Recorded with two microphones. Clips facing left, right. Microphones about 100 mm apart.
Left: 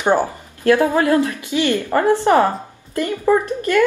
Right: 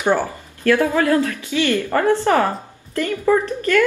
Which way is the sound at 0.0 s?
15° left (ahead or behind).